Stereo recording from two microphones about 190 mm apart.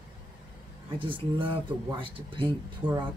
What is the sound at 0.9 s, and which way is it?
Speech, 25° right (ahead or behind).